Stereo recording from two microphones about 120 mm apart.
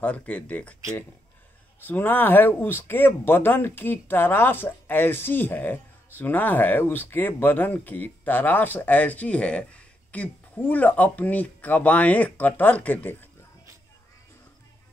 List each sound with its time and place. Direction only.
0.0 s speech: 10° left (ahead or behind)
1.8 s speech: 15° left (ahead or behind)